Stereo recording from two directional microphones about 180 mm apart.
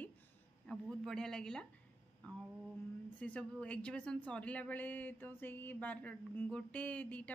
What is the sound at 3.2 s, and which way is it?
A woman's voice, 5° left (ahead or behind).